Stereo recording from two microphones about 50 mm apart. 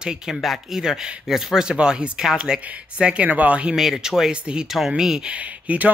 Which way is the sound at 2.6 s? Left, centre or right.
Right.